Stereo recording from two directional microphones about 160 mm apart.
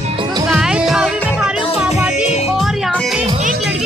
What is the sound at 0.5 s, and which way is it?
Music, 5° right (ahead or behind).